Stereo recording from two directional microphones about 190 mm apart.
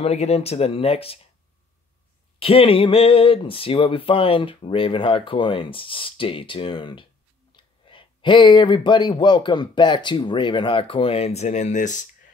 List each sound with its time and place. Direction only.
0.0 s speech: 35° left (ahead or behind)
2.3 s speech: 30° left (ahead or behind)